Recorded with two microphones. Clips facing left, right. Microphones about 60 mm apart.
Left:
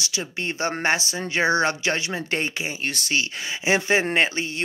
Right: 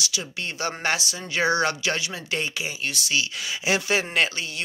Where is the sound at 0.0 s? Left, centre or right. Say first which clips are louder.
Left 2 dB; left.